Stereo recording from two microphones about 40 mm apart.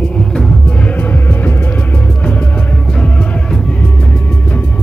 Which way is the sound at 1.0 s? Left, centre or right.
Left.